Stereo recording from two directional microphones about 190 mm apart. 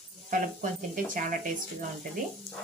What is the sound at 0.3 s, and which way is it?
Speech, 45° right (ahead or behind).